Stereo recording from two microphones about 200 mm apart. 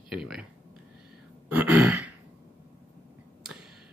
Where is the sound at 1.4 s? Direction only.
5° right (ahead or behind).